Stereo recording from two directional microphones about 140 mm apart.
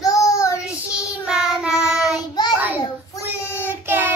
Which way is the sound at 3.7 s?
15° right (ahead or behind).